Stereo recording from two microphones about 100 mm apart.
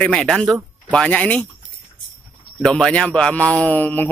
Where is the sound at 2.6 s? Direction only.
5° left (ahead or behind).